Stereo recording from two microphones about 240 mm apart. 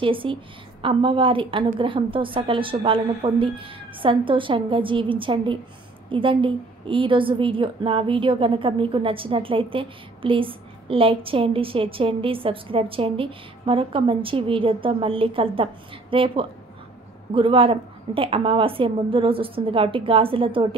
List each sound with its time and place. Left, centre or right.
0.0 s a woman's voice: right